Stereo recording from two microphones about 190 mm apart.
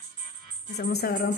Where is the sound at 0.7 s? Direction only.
55° left (ahead or behind).